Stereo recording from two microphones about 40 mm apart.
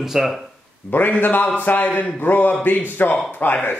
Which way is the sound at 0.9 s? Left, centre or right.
Left.